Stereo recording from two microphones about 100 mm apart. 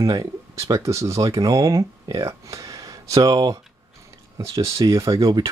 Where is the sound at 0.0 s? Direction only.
35° right (ahead or behind).